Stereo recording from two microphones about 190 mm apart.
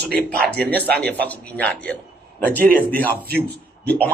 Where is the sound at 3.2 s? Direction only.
55° right (ahead or behind).